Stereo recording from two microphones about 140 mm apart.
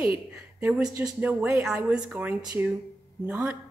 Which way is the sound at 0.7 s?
5° right (ahead or behind).